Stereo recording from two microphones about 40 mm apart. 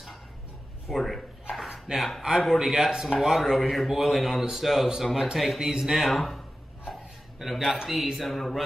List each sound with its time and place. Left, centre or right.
0.8 s a man's voice: centre
5.7 s a man's voice: centre
5.9 s a man's voice: centre
6.9 s a sound: centre
8.2 s a man's voice: centre